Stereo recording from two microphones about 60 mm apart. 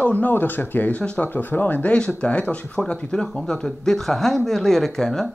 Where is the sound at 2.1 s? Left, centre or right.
Left.